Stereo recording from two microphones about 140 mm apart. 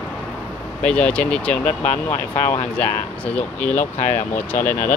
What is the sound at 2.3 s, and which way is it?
Speech, 55° left (ahead or behind).